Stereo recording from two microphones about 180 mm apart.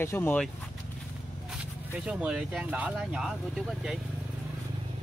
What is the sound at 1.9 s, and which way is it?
Speech, 5° right (ahead or behind).